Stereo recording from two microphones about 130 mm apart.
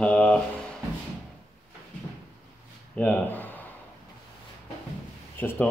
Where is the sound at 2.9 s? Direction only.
10° left (ahead or behind).